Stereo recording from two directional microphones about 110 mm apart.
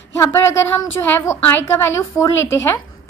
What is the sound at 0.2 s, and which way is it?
A woman's voice, 25° left (ahead or behind).